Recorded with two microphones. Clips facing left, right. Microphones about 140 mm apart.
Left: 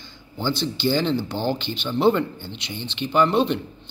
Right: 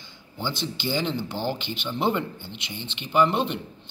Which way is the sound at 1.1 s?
30° left (ahead or behind).